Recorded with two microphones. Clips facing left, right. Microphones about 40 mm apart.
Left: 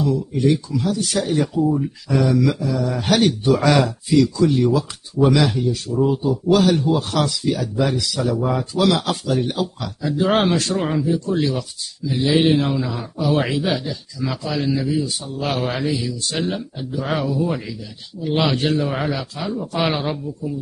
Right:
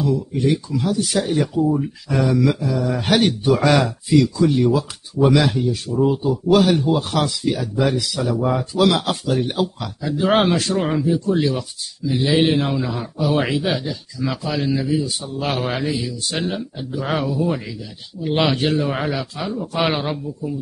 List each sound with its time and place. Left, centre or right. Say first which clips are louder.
0.0 s a man's voice: left 1 dB; centre
3.7 s a man's voice: right 1 dB; centre
4.2 s a man's voice: left 1 dB; centre
9.5 s a man's voice: right 2 dB; centre
10.0 s a man's voice: right 1 dB; centre